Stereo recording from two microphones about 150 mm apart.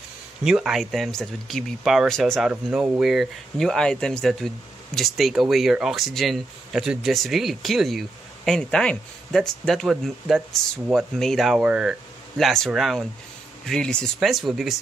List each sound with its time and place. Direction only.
0.4 s speech: 5° right (ahead or behind)
2.5 s speech: 10° right (ahead or behind)